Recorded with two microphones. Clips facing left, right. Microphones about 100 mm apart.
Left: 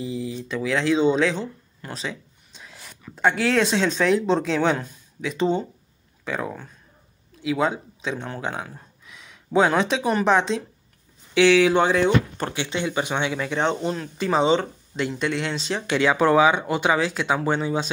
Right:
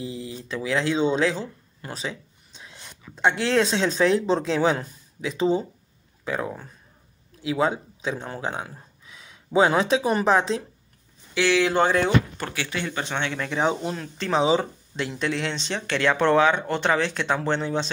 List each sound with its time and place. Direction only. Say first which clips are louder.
0.5 s speech: left 2 dB; centre (ahead or behind)
1.9 s a sound: even; 5° right (ahead or behind)
3.0 s speech: left 1 dB; centre (ahead or behind)
11.4 s speech: left 3 dB; 15° left (ahead or behind)
12.4 s speech: left 3 dB; 25° left (ahead or behind); by 17.9 s 5° left (ahead or behind)